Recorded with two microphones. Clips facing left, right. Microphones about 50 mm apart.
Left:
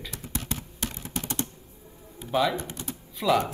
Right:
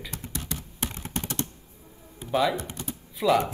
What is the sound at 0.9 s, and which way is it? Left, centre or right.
Typing, right.